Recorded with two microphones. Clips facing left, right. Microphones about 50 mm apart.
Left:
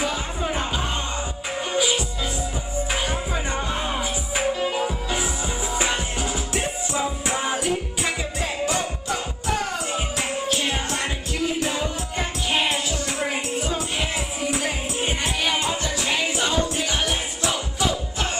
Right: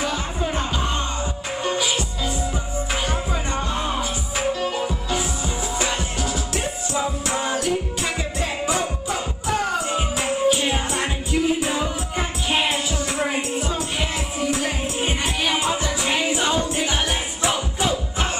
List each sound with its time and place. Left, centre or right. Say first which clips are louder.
0.0 s music: right 1 dB; centre
2.9 s music: right 1 dB; centre
8.0 s music: right 1 dB; centre
16.4 s music: right 2 dB; right